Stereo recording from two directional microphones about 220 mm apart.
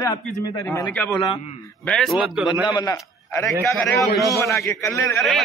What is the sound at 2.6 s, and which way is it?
A man's voice, 20° left (ahead or behind).